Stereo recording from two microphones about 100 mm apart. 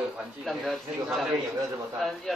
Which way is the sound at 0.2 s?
Centre (ahead or behind).